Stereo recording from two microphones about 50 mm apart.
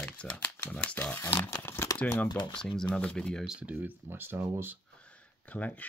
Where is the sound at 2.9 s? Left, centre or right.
Left.